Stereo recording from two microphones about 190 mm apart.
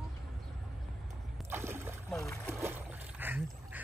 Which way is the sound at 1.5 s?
10° right (ahead or behind).